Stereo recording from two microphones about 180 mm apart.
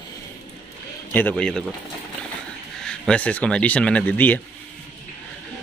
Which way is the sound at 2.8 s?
5° left (ahead or behind).